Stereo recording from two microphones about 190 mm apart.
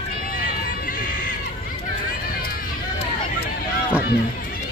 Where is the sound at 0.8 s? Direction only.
50° left (ahead or behind).